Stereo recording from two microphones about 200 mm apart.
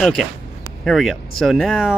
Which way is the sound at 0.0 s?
5° left (ahead or behind).